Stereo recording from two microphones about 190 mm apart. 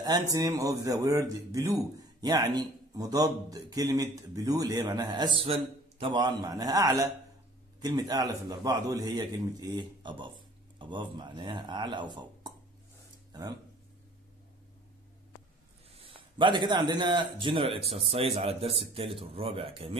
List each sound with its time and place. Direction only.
0.0 s speech: 20° right (ahead or behind)
15.9 s a man's voice: 30° right (ahead or behind)